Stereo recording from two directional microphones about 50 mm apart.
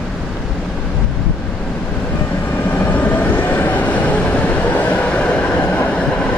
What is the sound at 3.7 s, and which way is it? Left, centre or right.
Train, left.